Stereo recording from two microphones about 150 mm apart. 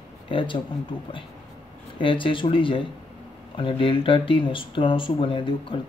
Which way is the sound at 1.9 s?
35° left (ahead or behind).